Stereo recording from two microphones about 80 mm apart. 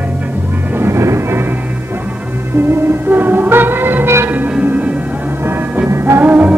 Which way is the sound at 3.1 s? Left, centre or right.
Right.